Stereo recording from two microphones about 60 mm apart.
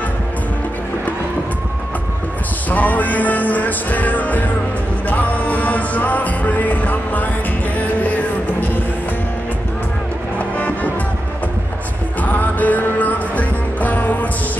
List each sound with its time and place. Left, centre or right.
2.7 s music: left
12.2 s music: left